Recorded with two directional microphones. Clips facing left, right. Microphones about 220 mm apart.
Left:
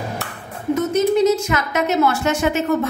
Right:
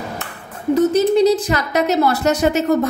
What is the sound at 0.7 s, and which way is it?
A woman's voice, 35° right (ahead or behind).